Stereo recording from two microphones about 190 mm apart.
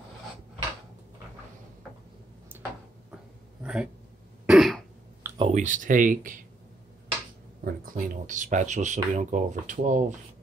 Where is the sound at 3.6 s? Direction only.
5° right (ahead or behind).